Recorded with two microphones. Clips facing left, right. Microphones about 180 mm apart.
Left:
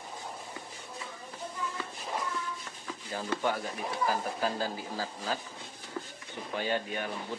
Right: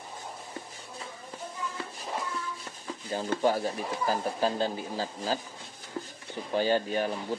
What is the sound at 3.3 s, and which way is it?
Speech, 35° right (ahead or behind).